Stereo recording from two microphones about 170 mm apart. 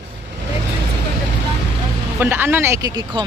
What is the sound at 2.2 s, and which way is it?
Speech, 10° right (ahead or behind).